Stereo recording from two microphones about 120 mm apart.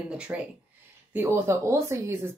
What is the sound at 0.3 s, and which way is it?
Speech, 15° right (ahead or behind).